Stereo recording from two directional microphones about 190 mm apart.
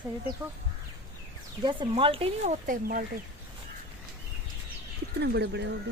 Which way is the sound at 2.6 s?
45° right (ahead or behind).